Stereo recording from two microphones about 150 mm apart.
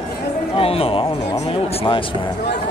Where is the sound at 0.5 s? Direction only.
40° left (ahead or behind).